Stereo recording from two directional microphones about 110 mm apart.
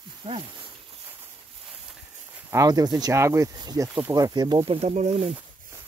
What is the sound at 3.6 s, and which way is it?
Speech, 40° right (ahead or behind).